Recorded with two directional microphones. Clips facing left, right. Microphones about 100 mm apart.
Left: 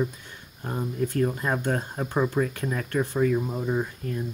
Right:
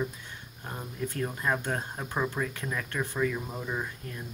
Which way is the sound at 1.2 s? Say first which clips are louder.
Left 4 dB; 40° left (ahead or behind).